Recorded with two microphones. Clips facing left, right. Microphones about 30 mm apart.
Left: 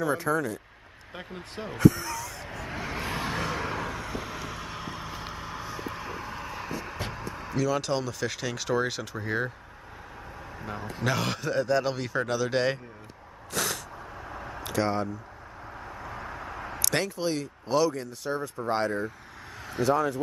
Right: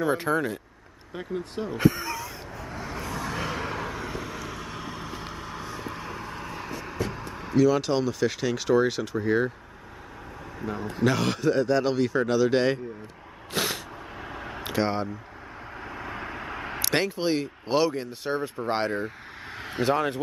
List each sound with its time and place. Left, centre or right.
0.0 s speech: right
1.1 s speech: centre
1.8 s a sound: right
3.0 s vehicle: left
3.3 s vehicle: centre
7.3 s speech: centre
10.6 s a man's voice: centre
13.5 s a sound: right
14.7 s speech: right
15.9 s vehicle: right
16.8 s speech: right